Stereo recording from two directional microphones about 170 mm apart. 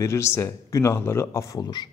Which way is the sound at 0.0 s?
15° left (ahead or behind).